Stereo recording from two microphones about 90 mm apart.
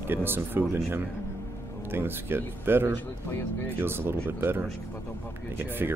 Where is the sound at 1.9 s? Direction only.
25° right (ahead or behind).